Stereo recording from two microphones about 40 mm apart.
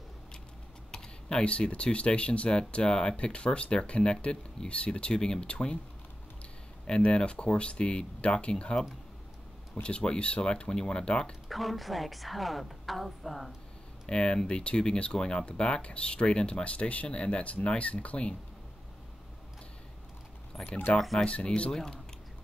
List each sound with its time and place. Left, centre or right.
0.9 s computer keyboard: centre
1.4 s speech: left
6.9 s speech: left
9.8 s speech: left
11.4 s a woman's voice: centre
14.0 s speech: left
20.6 s speech: left
21.2 s speech: left
21.7 s speech: centre